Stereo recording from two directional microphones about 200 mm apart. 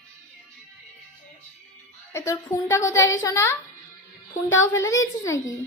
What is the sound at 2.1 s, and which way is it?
A woman's voice, 15° left (ahead or behind).